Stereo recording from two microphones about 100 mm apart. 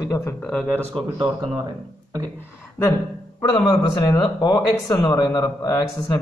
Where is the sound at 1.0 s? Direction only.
65° right (ahead or behind).